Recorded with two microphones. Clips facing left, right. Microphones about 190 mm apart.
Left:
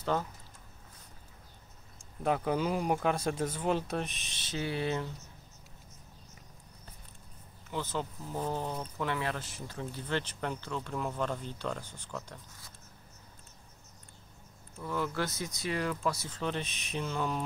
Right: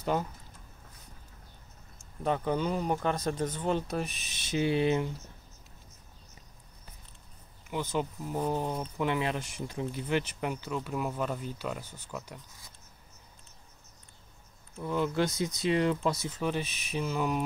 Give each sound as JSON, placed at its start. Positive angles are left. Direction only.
{"t": 0.1, "sound": "speech", "side_deg": -10}
{"t": 2.0, "sound": "speech", "side_deg": 5}
{"t": 4.6, "sound": "speech", "side_deg": -20}
{"t": 7.7, "sound": "speech", "side_deg": -15}
{"t": 14.8, "sound": "speech", "side_deg": -20}
{"t": 16.3, "sound": "speech", "side_deg": -5}